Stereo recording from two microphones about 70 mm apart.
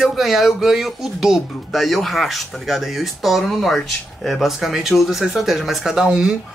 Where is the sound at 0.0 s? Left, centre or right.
Centre.